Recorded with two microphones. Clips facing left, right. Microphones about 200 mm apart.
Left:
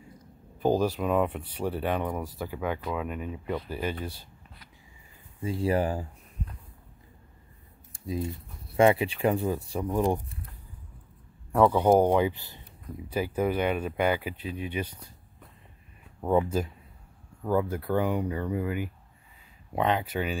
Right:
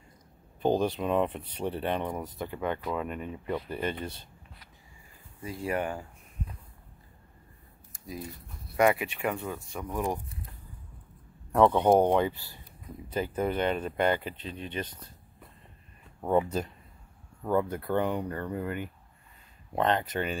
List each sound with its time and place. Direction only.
0.6 s speech: 5° left (ahead or behind)
5.4 s speech: 30° left (ahead or behind)
7.9 s speech: 25° left (ahead or behind)
11.5 s speech: 5° left (ahead or behind)
16.4 s speech: 5° left (ahead or behind)